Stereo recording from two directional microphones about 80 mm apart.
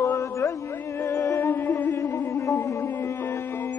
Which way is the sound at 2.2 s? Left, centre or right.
Left.